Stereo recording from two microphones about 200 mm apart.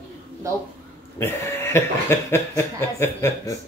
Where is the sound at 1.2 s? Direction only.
10° left (ahead or behind).